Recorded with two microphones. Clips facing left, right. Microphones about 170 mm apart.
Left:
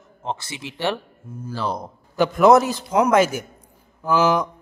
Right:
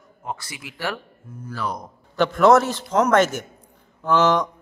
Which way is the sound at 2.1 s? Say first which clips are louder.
Left 1 dB; 10° left (ahead or behind).